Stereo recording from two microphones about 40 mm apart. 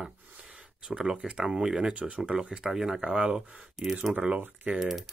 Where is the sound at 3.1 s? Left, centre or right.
Right.